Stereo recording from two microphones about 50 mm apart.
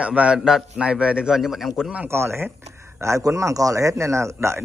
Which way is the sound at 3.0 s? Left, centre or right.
Right.